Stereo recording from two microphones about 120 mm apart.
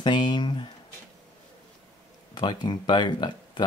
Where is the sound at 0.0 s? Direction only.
40° left (ahead or behind).